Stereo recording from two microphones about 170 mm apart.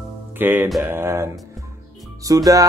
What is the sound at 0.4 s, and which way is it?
Music, 10° right (ahead or behind).